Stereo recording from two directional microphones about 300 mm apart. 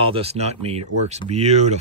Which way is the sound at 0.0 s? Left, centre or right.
Centre.